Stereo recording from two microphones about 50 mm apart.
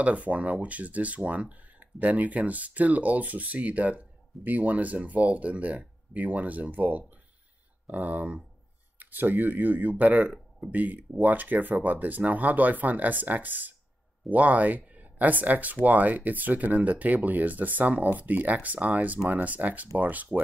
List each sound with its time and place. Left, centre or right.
0.0 s speech: right